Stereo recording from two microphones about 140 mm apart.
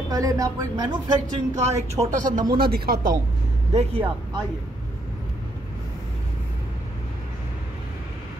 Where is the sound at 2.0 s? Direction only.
45° right (ahead or behind).